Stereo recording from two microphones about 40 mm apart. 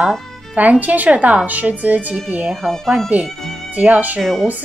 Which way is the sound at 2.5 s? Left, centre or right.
Centre.